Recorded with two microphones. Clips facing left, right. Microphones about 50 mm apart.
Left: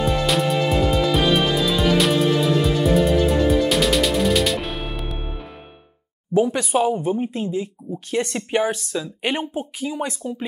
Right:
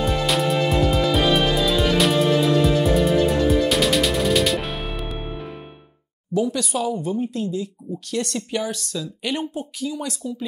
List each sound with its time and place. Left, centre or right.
0.0 s music: centre
6.3 s speech: left